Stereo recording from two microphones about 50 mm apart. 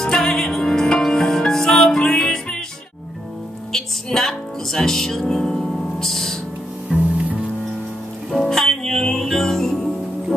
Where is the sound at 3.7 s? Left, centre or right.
Centre.